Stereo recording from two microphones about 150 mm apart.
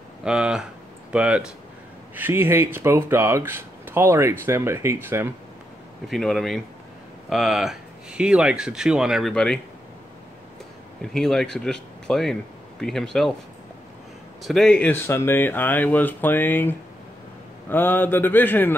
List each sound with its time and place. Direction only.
0.2 s speech: 5° right (ahead or behind)
6.0 s speech: centre (ahead or behind)
11.0 s speech: centre (ahead or behind)
14.4 s speech: centre (ahead or behind)